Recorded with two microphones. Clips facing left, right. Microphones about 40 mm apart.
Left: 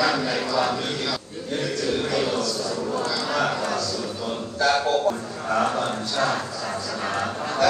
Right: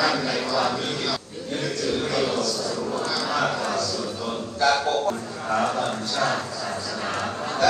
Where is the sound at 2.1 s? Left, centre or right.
Centre.